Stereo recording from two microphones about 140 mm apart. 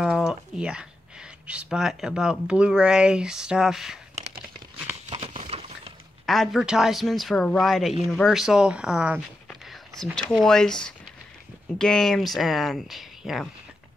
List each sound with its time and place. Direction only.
0.0 s a sound: 5° right (ahead or behind)
1.5 s speech: 5° right (ahead or behind)
5.1 s a sound: 40° right (ahead or behind)
6.2 s speech: centre (ahead or behind)
9.5 s whispering: 5° left (ahead or behind)
10.3 s speech: 5° left (ahead or behind)